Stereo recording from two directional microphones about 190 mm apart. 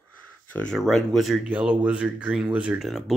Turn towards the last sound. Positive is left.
turn(degrees=0)  # may be behind; listen again after turning